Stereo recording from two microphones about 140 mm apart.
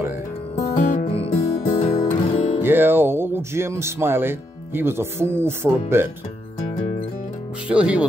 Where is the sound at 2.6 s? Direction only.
15° right (ahead or behind).